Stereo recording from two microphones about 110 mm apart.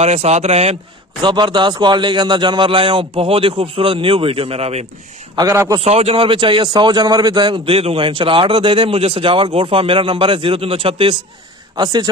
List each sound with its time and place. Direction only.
0.0 s speech: 75° right (ahead or behind)
1.2 s a man's voice: 40° right (ahead or behind); by 4.8 s 70° right (ahead or behind)
5.5 s a man's voice: 25° right (ahead or behind)
5.8 s a man's voice: 65° right (ahead or behind)
11.7 s speech: 40° right (ahead or behind)